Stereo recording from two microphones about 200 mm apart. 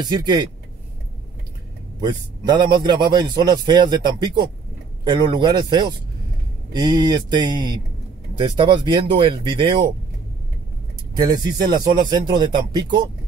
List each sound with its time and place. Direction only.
0.1 s a man's voice: 20° right (ahead or behind)
2.0 s a man's voice: 20° right (ahead or behind)
11.1 s a man's voice: 20° right (ahead or behind)